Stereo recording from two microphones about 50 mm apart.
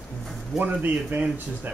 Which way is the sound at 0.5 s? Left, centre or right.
Right.